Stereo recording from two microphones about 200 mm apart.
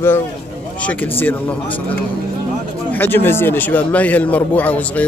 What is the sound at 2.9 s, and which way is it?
A man's voice, 10° left (ahead or behind).